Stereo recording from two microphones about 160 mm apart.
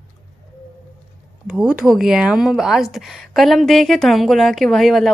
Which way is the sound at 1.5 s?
5° right (ahead or behind).